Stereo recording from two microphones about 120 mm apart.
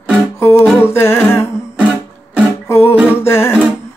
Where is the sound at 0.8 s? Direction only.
20° left (ahead or behind).